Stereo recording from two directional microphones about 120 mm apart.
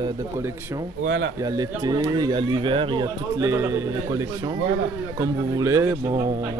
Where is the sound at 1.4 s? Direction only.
30° right (ahead or behind).